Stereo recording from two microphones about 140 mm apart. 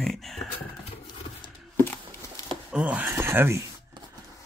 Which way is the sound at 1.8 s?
15° left (ahead or behind).